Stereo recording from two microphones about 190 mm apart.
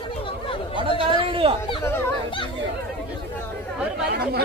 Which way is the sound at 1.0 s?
30° right (ahead or behind).